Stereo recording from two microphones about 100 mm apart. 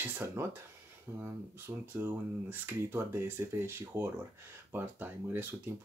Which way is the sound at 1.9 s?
20° right (ahead or behind).